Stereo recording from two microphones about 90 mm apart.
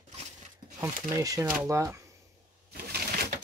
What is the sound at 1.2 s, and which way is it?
Speech, 40° right (ahead or behind).